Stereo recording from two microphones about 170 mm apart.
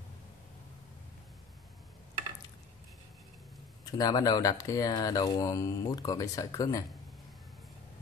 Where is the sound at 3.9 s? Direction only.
20° left (ahead or behind).